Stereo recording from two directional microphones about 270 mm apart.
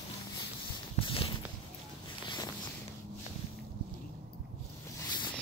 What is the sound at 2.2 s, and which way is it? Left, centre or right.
Vehicle, centre.